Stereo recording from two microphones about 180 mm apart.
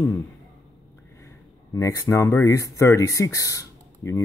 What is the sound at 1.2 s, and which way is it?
Speech, 15° left (ahead or behind).